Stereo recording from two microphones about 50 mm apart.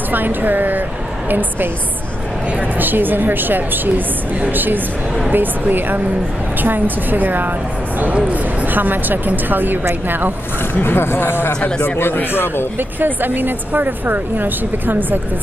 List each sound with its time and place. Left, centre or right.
0.1 s speech: right
2.8 s speech: right
10.7 s speech: left
12.7 s speech: right